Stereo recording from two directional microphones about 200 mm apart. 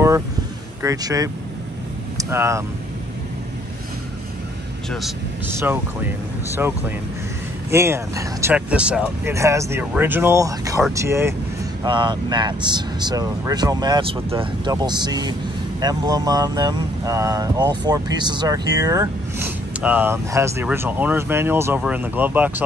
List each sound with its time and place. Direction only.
0.8 s speech: 15° right (ahead or behind)
5.6 s speech: 10° right (ahead or behind)
7.7 s speech: 15° right (ahead or behind)